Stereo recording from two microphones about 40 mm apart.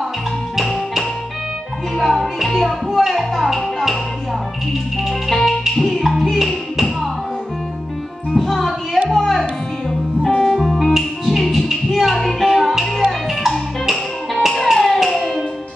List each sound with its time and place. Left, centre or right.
2.0 s music: centre
5.3 s music: centre
8.4 s music: centre
10.7 s music: centre